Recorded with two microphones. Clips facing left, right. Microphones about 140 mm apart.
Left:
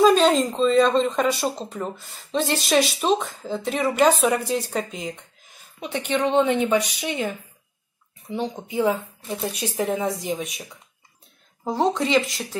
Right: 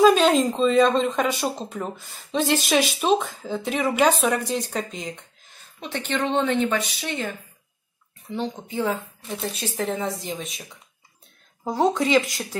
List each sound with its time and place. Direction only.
0.0 s a woman's voice: centre (ahead or behind); by 7.2 s 15° left (ahead or behind)
8.3 s speech: 15° left (ahead or behind)
11.6 s speech: centre (ahead or behind)